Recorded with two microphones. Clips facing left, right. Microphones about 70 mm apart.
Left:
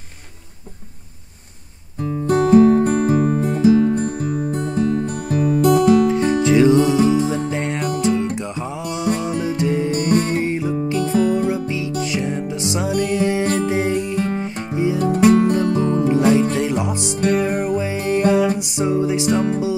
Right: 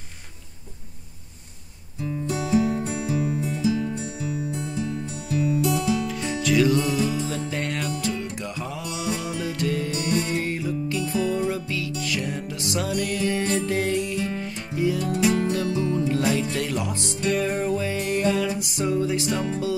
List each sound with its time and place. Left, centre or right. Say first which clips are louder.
2.0 s music: left 11 dB; left
6.0 s music: left 9 dB; left
9.0 s music: left 8 dB; left
9.4 s music: left 6 dB; left
9.8 s music: left 7 dB; left
10.4 s music: left 6 dB; left
14.1 s music: left 6 dB; left
14.4 s music: left 4 dB; left
15.1 s music: left 12 dB; left
16.1 s music: left 8 dB; left